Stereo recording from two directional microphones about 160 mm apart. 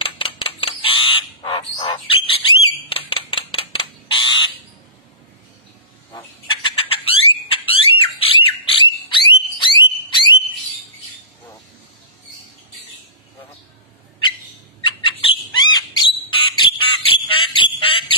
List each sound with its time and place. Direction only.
0.0 s crow: 35° left (ahead or behind)
2.9 s bird: 35° left (ahead or behind)
6.1 s bird: 35° left (ahead or behind)
14.9 s bird: 30° left (ahead or behind)
16.3 s a sound: 30° left (ahead or behind)